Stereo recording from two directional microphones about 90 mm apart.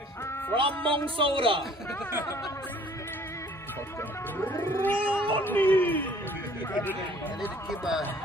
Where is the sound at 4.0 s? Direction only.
20° left (ahead or behind).